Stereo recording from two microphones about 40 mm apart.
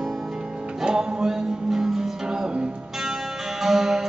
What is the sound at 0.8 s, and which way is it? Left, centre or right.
Music, centre.